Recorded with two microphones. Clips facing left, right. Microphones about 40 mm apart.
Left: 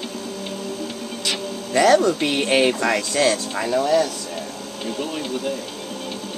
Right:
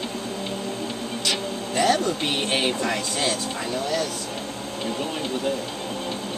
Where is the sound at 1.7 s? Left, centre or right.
Left.